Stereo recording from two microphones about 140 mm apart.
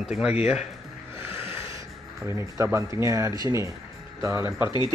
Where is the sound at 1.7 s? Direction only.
20° right (ahead or behind).